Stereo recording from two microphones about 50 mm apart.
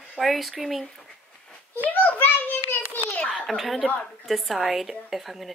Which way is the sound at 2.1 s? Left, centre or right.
Left.